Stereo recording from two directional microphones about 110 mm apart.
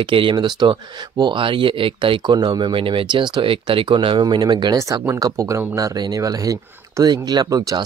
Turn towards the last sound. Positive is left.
turn(degrees=-35)  # may be behind; listen again after turning